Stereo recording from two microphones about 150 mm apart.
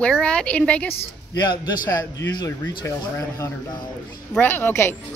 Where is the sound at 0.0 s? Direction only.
10° left (ahead or behind).